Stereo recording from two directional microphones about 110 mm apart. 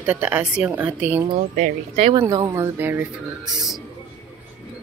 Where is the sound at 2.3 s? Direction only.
30° right (ahead or behind).